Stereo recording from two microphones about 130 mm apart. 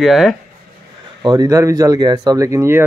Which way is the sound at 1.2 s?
30° right (ahead or behind).